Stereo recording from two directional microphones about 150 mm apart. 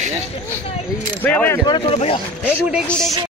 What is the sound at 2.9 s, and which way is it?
Speech, 5° left (ahead or behind).